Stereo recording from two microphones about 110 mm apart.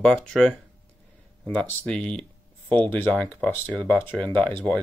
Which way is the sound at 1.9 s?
5° left (ahead or behind).